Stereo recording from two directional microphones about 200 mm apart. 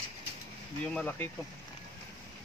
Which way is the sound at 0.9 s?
10° left (ahead or behind).